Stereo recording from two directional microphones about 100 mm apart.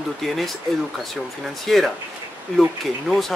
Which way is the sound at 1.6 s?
Centre (ahead or behind).